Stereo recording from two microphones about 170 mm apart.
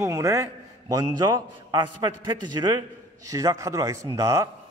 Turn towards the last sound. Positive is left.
turn(degrees=-20)  # may be behind; listen again after turning